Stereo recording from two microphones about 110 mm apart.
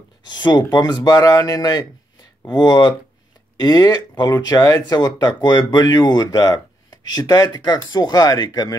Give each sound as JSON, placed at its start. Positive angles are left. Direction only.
{"t": 0.3, "sound": "speech", "side_deg": 40}